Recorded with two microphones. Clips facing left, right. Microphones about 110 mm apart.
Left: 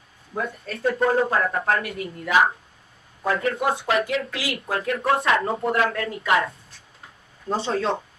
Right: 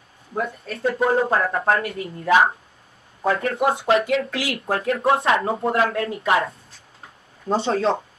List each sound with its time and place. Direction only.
0.9 s speech: 5° right (ahead or behind)
1.3 s speech: 30° right (ahead or behind)
7.4 s speech: 30° right (ahead or behind)